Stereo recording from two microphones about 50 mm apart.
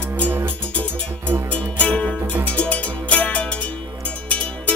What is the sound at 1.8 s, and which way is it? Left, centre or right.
Music, left.